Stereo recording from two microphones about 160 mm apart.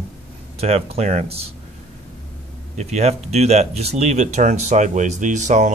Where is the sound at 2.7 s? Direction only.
45° right (ahead or behind).